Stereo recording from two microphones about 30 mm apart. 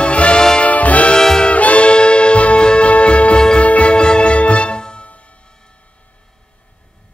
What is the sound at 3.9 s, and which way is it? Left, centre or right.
Music, left.